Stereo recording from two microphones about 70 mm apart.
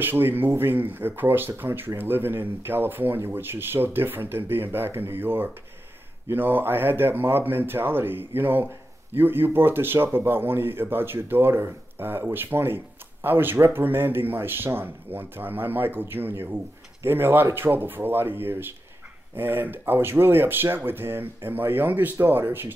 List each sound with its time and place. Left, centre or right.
0.0 s speech: right